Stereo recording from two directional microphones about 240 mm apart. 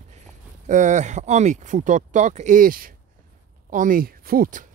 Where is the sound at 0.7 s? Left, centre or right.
Right.